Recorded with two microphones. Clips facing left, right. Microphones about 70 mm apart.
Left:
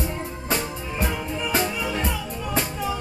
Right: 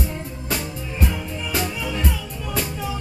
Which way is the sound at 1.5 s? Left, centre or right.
Left.